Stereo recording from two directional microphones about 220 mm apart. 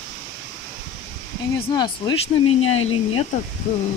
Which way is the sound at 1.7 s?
20° left (ahead or behind).